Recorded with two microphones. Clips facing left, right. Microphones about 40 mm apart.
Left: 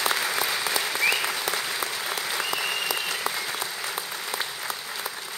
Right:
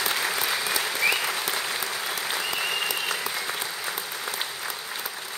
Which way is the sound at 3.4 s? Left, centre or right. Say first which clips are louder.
Even; right.